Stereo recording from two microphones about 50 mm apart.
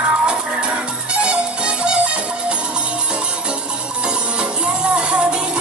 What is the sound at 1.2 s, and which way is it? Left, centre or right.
Music, right.